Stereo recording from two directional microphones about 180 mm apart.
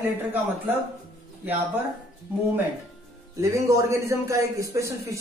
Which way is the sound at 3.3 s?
15° right (ahead or behind).